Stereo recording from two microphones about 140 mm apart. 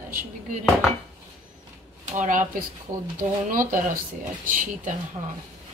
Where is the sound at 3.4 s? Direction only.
70° right (ahead or behind).